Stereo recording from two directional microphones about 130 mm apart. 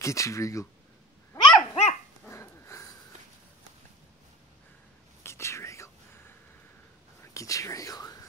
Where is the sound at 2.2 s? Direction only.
20° left (ahead or behind).